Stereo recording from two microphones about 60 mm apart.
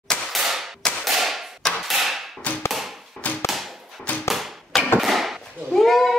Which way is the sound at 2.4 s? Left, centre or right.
Left.